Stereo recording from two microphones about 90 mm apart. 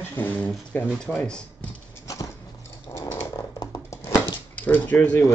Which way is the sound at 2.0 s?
40° left (ahead or behind).